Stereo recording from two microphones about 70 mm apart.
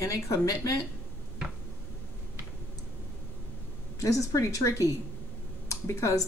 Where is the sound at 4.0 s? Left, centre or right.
Left.